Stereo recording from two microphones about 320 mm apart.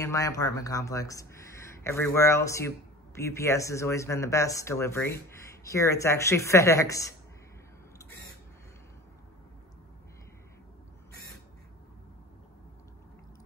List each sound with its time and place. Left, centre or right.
0.0 s speech: centre